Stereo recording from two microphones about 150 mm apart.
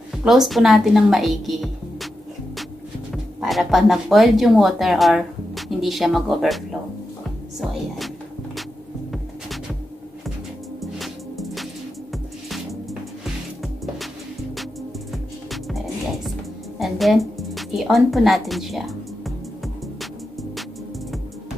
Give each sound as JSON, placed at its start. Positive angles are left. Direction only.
{"t": 0.1, "sound": "a woman's voice", "side_deg": 0}
{"t": 3.1, "sound": "speech", "side_deg": 0}
{"t": 10.8, "sound": "music", "side_deg": 0}
{"t": 15.5, "sound": "music", "side_deg": 0}